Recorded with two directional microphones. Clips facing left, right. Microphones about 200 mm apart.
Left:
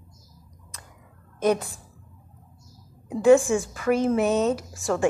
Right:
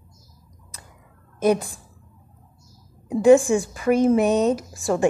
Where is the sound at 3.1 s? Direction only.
15° right (ahead or behind).